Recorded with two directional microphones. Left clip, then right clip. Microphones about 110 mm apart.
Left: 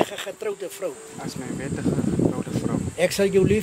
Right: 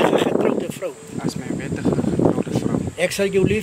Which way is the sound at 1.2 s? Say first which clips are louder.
Right 5 dB; 15° right (ahead or behind).